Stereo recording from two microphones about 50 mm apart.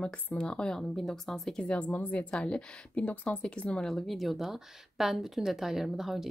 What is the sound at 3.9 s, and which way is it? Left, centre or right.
A woman's voice, centre.